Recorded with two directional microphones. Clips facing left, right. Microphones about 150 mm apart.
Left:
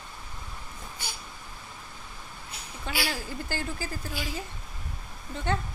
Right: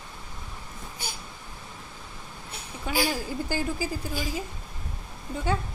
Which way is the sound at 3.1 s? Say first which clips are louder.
Right 4 dB; 15° right (ahead or behind).